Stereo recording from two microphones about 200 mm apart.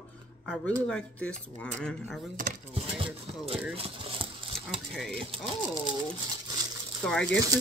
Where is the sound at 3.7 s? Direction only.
30° right (ahead or behind).